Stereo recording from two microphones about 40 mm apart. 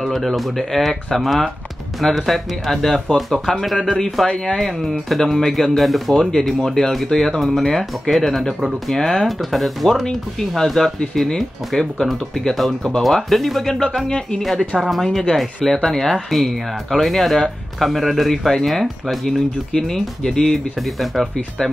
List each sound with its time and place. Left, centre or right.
0.0 s speech: centre
4.0 s speech: centre
6.4 s speech: centre
13.9 s speech: centre
14.4 s speech: centre
18.3 s speech: centre
19.7 s speech: centre
20.8 s speech: centre